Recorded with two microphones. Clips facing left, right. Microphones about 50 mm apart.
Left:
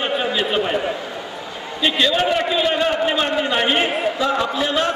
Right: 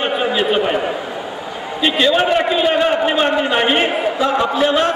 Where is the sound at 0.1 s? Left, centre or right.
Centre.